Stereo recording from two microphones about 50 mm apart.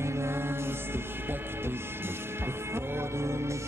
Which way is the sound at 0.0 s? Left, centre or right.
Right.